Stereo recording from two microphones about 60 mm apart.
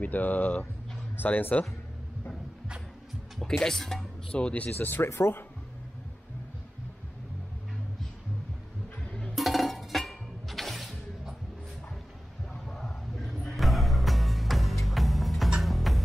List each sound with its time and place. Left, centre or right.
0.0 s speech: left
3.4 s speech: centre
4.3 s speech: centre
4.7 s speech: left
9.0 s music: centre
9.3 s music: centre
12.6 s a sound: centre
13.5 s music: centre